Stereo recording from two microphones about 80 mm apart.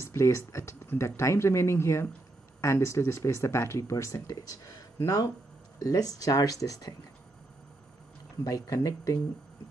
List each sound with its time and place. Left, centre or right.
0.0 s speech: left
8.5 s speech: left